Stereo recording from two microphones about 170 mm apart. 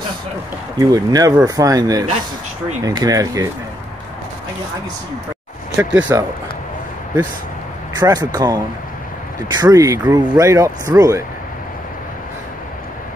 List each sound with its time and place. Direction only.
0.7 s speech: 20° right (ahead or behind)
5.8 s speech: 10° right (ahead or behind)
8.0 s speech: 25° right (ahead or behind)